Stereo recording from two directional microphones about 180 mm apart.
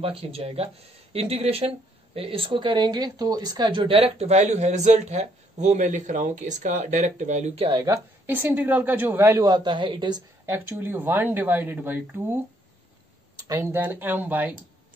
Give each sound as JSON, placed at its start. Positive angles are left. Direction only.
{"t": 0.0, "sound": "speech", "side_deg": -30}
{"t": 7.8, "sound": "a woman's voice", "side_deg": -15}
{"t": 10.4, "sound": "a woman's voice", "side_deg": -15}
{"t": 13.5, "sound": "a woman's voice", "side_deg": -15}